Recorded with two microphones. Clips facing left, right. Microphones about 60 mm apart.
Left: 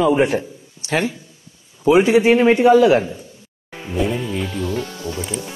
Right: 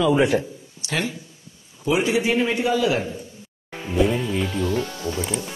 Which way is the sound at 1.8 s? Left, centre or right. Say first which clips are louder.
Left 8 dB; left.